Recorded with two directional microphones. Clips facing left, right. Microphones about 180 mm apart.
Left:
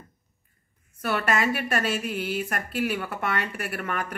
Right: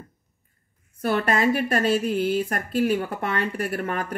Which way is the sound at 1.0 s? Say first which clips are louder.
Right 4 dB; 30° right (ahead or behind).